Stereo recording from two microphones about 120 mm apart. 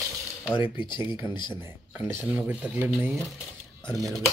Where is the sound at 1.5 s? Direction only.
20° right (ahead or behind).